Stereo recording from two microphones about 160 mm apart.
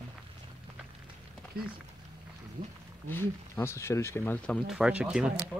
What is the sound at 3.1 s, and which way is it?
Speech, 15° left (ahead or behind).